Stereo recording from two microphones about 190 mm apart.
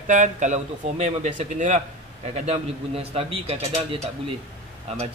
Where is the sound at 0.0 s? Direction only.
40° right (ahead or behind).